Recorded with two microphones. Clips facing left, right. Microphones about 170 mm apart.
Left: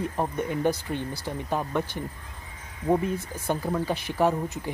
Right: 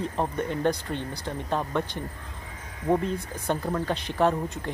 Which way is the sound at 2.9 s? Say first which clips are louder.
Left 1 dB; 10° left (ahead or behind).